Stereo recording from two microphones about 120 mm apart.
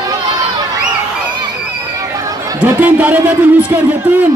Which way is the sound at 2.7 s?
15° right (ahead or behind).